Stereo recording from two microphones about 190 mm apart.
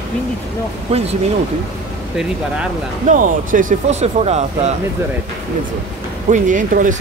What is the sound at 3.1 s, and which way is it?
Speech, 45° right (ahead or behind).